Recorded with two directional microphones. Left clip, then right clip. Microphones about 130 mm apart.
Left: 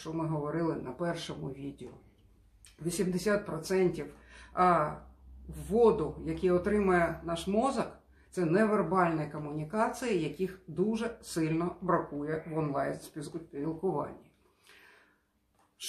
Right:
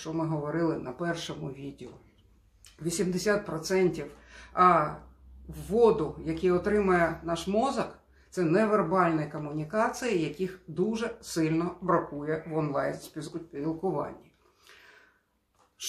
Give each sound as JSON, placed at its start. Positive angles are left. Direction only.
{"t": 0.0, "sound": "speech", "side_deg": -15}
{"t": 2.8, "sound": "speech", "side_deg": -20}